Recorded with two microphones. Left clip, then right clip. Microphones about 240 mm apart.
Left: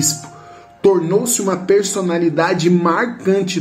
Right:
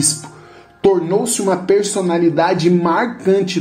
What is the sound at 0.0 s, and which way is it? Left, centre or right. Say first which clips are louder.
Speech: even; centre.